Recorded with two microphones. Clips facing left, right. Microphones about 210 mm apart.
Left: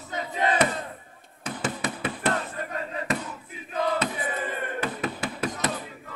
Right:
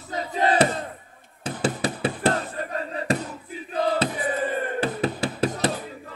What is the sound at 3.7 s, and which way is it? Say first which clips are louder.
Crowd: right 3 dB; 35° right (ahead or behind).